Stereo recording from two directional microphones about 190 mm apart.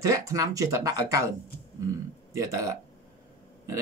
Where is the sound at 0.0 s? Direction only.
20° right (ahead or behind).